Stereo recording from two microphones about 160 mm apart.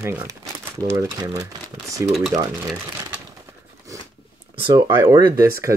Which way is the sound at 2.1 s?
Centre (ahead or behind).